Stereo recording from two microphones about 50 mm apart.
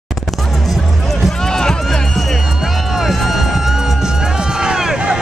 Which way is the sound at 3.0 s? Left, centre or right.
Centre.